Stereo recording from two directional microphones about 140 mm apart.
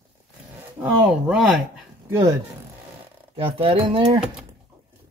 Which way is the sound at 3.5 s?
40° right (ahead or behind).